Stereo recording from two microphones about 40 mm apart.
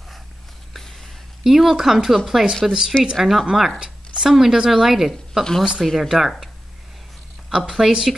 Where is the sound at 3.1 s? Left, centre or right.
Centre.